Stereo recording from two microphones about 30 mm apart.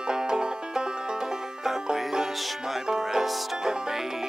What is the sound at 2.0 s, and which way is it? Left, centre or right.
Music, centre.